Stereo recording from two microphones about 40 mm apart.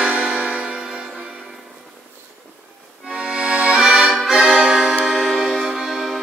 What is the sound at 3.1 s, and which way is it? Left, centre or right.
Music, right.